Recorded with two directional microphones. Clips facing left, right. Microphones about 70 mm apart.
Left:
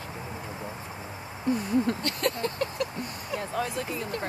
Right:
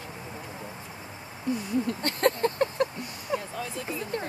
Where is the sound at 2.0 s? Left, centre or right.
Right.